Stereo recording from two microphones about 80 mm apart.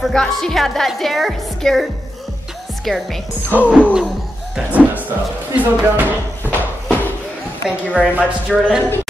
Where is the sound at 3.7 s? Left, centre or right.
Centre.